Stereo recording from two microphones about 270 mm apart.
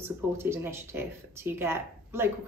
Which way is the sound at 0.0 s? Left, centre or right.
Centre.